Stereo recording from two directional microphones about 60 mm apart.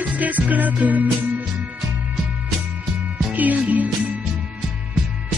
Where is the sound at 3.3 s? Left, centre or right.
Right.